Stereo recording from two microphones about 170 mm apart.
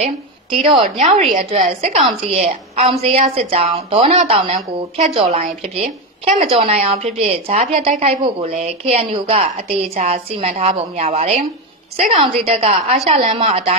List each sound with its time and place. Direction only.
0.0 s a woman's voice: 35° right (ahead or behind)
0.8 s a woman's voice: 45° right (ahead or behind)